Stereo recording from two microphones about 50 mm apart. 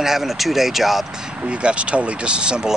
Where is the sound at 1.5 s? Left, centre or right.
Right.